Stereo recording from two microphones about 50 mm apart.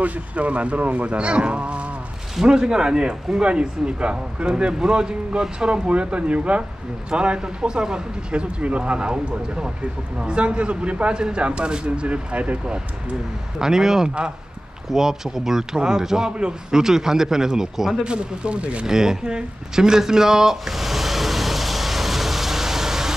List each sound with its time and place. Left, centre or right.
0.0 s speech: right
13.6 s speech: centre
18.0 s speech: right
18.9 s a sound: centre